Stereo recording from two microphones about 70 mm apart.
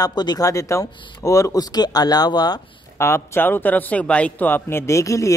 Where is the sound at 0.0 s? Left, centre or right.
Left.